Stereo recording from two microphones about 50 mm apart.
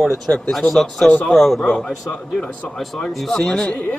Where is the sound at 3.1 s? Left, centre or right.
Centre.